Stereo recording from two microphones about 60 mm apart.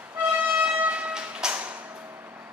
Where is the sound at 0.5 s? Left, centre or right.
Right.